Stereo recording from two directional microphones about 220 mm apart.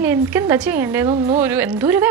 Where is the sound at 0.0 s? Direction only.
10° right (ahead or behind).